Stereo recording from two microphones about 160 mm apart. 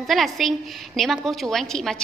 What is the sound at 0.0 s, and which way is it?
A woman's voice, centre (ahead or behind).